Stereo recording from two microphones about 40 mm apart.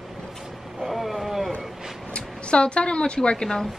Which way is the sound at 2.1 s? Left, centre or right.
Left.